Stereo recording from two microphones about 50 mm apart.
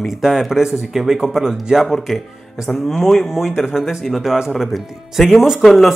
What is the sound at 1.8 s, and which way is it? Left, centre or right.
Speech, centre.